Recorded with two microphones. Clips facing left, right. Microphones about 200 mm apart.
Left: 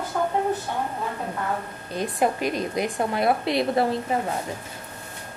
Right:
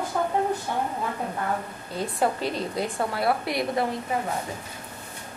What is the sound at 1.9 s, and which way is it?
A woman's voice, 15° left (ahead or behind).